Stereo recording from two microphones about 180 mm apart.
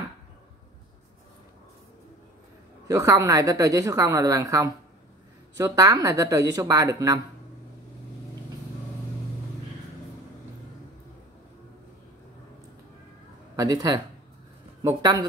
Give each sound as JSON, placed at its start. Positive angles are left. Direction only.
{"t": 2.9, "sound": "speech", "side_deg": -20}
{"t": 13.6, "sound": "speech", "side_deg": -20}